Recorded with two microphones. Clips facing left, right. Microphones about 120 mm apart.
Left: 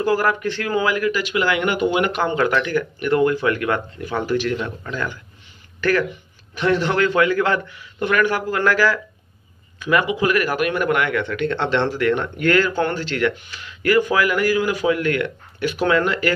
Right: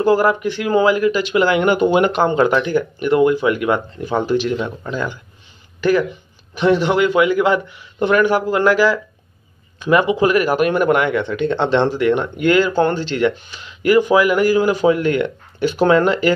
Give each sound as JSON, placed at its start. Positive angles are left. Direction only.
{"t": 0.0, "sound": "speech", "side_deg": -20}
{"t": 0.7, "sound": "a man's voice", "side_deg": -25}